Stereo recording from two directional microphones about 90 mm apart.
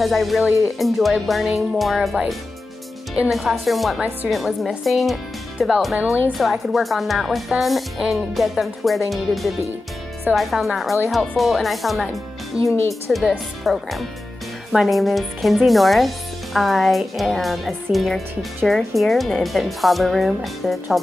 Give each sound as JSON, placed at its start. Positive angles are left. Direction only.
{"t": 0.0, "sound": "a woman's voice", "side_deg": 0}
{"t": 12.6, "sound": "speech", "side_deg": 35}
{"t": 13.7, "sound": "a woman's voice", "side_deg": 0}